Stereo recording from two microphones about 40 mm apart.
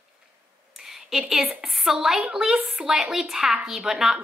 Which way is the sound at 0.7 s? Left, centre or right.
Centre.